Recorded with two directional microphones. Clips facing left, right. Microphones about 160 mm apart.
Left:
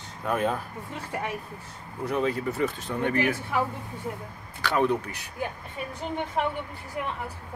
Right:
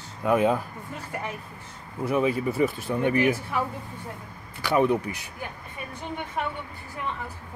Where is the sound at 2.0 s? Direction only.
10° right (ahead or behind).